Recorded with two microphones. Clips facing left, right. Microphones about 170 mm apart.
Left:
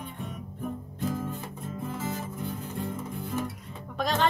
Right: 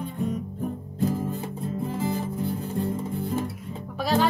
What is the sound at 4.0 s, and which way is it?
Music, 10° right (ahead or behind).